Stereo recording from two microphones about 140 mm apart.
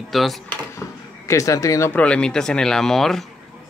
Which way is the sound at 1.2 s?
20° left (ahead or behind).